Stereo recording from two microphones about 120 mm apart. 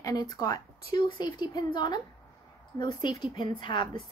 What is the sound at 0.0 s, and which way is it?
A woman's voice, 30° left (ahead or behind).